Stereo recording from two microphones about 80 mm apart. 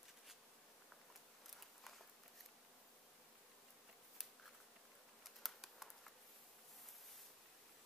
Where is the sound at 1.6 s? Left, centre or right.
Centre.